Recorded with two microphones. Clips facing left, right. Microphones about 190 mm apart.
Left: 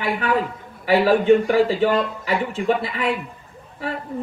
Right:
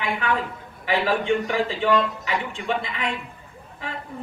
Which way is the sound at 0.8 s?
40° left (ahead or behind).